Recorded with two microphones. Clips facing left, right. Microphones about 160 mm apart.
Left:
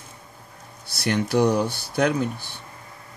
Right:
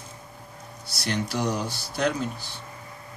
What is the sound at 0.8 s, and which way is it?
Speech, 60° left (ahead or behind).